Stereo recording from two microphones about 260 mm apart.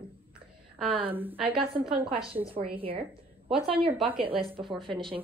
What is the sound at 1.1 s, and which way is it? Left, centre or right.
Speech, centre.